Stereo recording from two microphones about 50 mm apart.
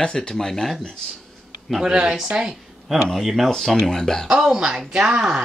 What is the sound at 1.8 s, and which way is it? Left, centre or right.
Speech, centre.